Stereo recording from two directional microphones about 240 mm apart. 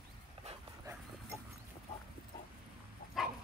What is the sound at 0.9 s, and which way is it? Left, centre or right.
Dog, centre.